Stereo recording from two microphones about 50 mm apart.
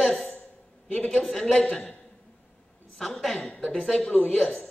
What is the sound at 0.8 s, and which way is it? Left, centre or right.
A woman's voice, left.